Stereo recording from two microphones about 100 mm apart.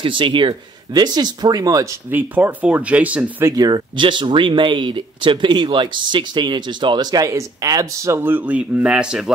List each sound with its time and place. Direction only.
0.0 s speech: 55° right (ahead or behind); by 2.0 s 35° right (ahead or behind)
2.0 s speech: 20° right (ahead or behind)
3.4 s speech: 40° right (ahead or behind); by 9.3 s 5° right (ahead or behind)